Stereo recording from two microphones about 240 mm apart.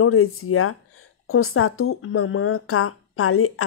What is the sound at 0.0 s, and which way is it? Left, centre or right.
Speech, left.